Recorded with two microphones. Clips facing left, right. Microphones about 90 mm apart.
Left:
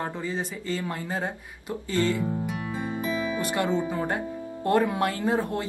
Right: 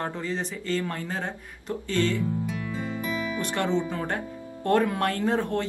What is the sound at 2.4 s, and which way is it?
Music, 20° left (ahead or behind).